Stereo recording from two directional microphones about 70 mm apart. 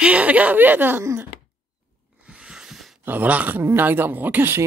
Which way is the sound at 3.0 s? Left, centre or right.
Right.